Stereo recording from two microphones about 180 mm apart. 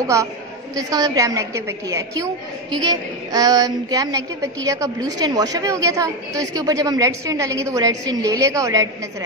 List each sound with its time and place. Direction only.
0.0 s a woman's voice: 15° right (ahead or behind)